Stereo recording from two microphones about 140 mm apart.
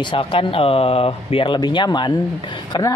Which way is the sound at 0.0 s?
35° left (ahead or behind).